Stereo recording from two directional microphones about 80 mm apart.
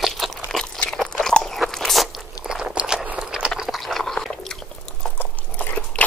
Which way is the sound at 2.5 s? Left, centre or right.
Centre.